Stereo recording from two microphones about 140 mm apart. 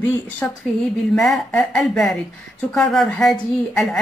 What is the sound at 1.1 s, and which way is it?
Speech, centre (ahead or behind).